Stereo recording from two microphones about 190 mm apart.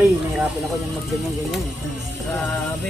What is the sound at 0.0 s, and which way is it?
Speech, centre (ahead or behind).